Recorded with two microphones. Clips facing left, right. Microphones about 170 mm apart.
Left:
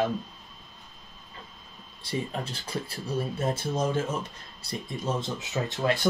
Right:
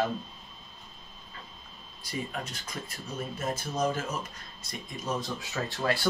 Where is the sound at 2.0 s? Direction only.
30° left (ahead or behind).